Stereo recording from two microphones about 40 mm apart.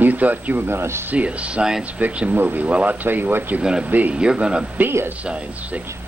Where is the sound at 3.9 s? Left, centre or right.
Right.